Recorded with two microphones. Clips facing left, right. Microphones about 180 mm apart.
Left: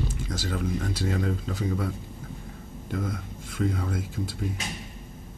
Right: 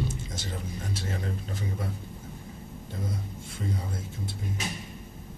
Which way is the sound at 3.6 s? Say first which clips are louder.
Left 7 dB; 90° left.